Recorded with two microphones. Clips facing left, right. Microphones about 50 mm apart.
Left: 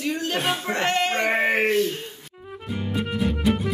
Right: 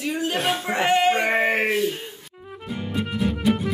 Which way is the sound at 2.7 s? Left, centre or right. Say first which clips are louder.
Even; centre.